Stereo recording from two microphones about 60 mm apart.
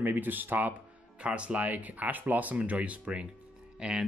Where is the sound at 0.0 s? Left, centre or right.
Right.